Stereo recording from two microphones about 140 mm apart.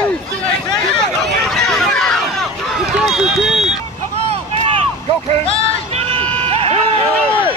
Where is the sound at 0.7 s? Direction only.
Centre (ahead or behind).